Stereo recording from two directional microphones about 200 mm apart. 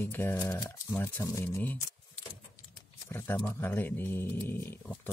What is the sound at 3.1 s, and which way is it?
Speech, 10° left (ahead or behind).